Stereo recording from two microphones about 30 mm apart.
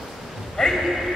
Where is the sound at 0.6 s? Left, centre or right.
Centre.